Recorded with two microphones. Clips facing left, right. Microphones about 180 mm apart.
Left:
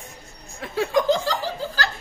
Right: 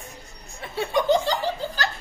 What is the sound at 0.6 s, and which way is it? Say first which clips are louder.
Speech: left 3 dB; 90° left.